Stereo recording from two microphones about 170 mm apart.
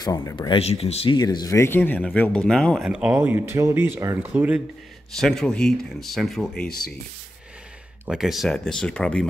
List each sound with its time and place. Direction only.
0.0 s speech: 20° left (ahead or behind)
0.6 s speech: 40° left (ahead or behind)
1.1 s speech: 25° left (ahead or behind); by 6.7 s 5° left (ahead or behind)
8.0 s speech: 5° right (ahead or behind)